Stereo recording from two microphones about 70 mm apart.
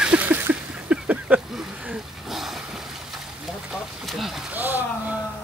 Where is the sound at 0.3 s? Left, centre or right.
Right.